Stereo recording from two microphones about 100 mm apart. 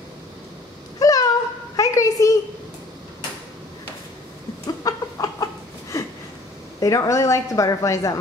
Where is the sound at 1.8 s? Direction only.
35° left (ahead or behind).